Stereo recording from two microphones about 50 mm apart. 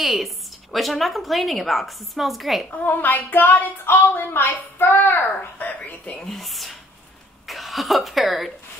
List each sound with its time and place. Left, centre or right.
0.0 s a woman's voice: centre
2.7 s a child's voice: left
5.8 s speech: left
6.1 s a woman's voice: centre